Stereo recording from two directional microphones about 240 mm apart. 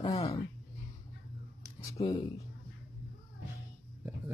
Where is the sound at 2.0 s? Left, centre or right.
Centre.